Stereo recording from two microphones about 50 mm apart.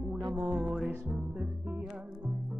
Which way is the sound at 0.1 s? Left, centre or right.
Centre.